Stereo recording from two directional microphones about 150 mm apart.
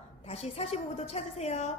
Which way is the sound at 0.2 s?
45° left (ahead or behind).